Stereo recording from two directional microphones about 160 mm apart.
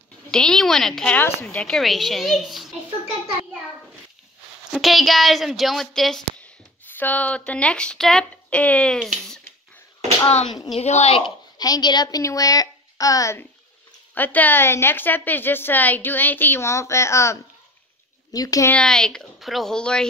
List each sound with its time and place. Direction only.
0.3 s a woman's voice: 5° left (ahead or behind)
4.7 s a woman's voice: centre (ahead or behind)
10.8 s a woman's voice: 45° left (ahead or behind); by 18.7 s 20° left (ahead or behind)
18.7 s a woman's voice: 5° left (ahead or behind)